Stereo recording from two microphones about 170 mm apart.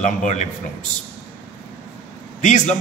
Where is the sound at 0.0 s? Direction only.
45° left (ahead or behind).